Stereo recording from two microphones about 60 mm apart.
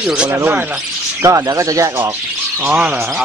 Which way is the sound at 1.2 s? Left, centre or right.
Right.